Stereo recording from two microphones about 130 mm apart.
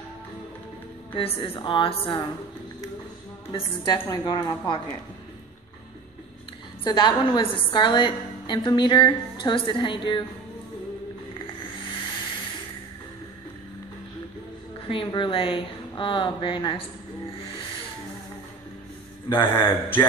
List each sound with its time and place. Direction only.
1.1 s a woman's voice: 45° left (ahead or behind)
3.5 s a woman's voice: 35° left (ahead or behind)
6.8 s a woman's voice: 35° left (ahead or behind)
14.9 s a woman's voice: 40° left (ahead or behind)
19.2 s a man's voice: 35° left (ahead or behind)
19.5 s a man's voice: 15° left (ahead or behind)